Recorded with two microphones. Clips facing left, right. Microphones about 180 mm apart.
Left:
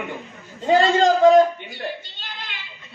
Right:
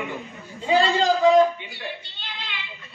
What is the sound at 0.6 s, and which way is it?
Speech, 45° left (ahead or behind).